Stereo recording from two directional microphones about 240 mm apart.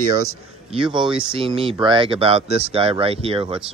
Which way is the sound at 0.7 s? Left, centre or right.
Centre.